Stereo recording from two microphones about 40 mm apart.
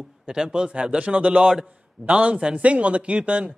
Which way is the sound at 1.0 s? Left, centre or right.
Right.